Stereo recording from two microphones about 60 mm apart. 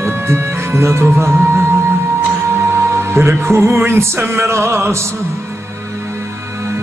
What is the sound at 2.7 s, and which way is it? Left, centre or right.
Music, right.